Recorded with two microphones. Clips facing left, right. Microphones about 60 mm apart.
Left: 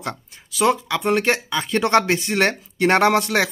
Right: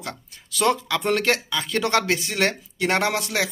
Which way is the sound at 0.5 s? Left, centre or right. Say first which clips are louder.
Left 2 dB; centre.